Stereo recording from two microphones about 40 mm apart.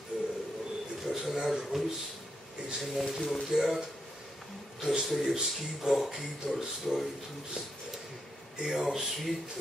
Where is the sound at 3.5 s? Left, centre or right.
Centre.